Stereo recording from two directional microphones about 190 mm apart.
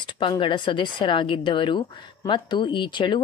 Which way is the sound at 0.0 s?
25° left (ahead or behind).